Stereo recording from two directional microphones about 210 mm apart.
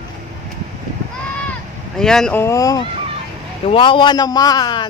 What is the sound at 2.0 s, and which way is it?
A man's voice, 5° left (ahead or behind).